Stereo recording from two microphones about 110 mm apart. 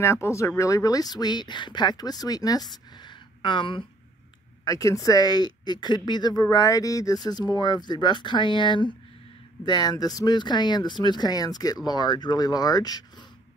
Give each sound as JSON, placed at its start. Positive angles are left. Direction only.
{"t": 0.0, "sound": "speech", "side_deg": 25}
{"t": 4.6, "sound": "speech", "side_deg": 30}